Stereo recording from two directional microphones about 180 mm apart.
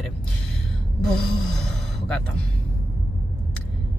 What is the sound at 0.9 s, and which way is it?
Speech, 5° left (ahead or behind).